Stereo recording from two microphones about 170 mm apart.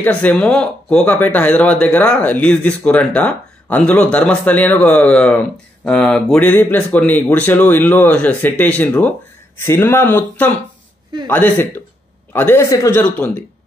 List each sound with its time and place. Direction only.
0.0 s speech: 5° left (ahead or behind)